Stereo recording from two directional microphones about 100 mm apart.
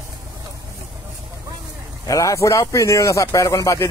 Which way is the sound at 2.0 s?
30° left (ahead or behind).